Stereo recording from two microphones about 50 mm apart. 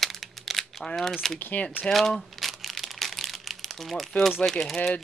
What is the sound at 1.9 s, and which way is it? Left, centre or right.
Crumpling, centre.